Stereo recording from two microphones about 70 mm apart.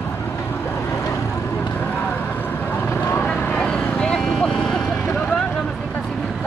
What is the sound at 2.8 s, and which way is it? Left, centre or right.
Vehicle, left.